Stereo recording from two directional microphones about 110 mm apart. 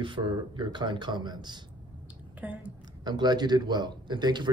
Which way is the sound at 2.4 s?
10° right (ahead or behind).